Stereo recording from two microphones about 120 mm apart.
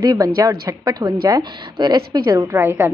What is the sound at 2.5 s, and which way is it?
Speech, 25° right (ahead or behind).